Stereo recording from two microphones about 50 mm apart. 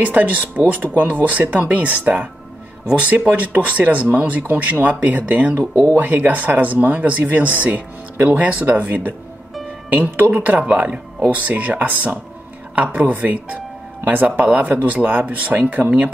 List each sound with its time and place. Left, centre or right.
0.0 s speech: right
9.8 s speech: right